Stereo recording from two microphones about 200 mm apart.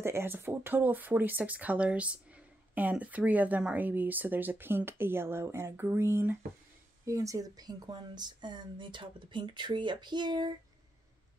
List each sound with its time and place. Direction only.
0.0 s speech: 10° right (ahead or behind)